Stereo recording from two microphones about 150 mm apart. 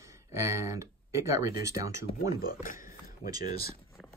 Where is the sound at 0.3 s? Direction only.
20° right (ahead or behind).